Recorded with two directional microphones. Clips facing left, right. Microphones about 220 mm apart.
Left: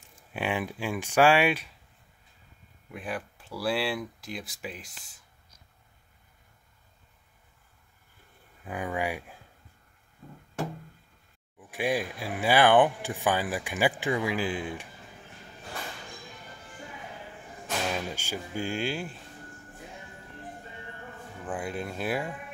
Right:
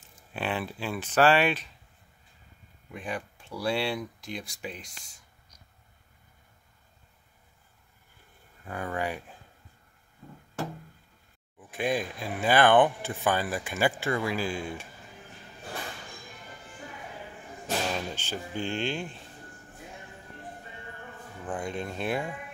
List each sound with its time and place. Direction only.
0.3 s speech: 10° left (ahead or behind)
2.9 s speech: 5° left (ahead or behind)
8.6 s speech: 15° left (ahead or behind)
11.7 s speech: 10° left (ahead or behind)
17.9 s speech: 10° left (ahead or behind)
21.5 s speech: 5° left (ahead or behind)